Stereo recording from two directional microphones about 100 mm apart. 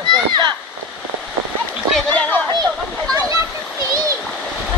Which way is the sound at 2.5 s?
40° right (ahead or behind).